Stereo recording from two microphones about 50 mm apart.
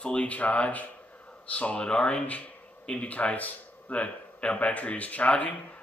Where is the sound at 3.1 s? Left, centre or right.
Left.